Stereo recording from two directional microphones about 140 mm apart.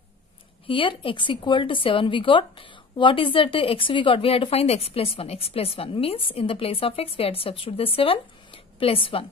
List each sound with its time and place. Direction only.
0.7 s a woman's voice: 40° left (ahead or behind)